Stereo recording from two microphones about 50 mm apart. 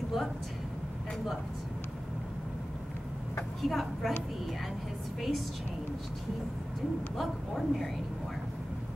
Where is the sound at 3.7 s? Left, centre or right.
Centre.